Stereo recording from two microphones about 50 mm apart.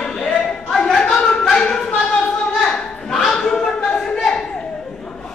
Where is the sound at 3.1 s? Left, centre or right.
Centre.